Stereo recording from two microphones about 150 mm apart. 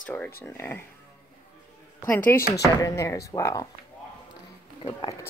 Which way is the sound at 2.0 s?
15° left (ahead or behind).